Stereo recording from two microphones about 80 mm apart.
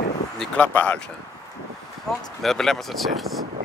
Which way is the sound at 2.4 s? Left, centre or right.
Centre.